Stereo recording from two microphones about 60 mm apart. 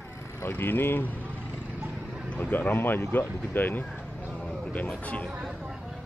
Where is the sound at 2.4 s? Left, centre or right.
Left.